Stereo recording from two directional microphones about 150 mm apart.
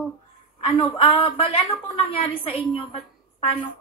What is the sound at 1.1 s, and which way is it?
Speech, 40° left (ahead or behind).